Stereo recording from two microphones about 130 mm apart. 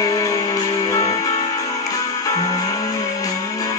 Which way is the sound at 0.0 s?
25° left (ahead or behind).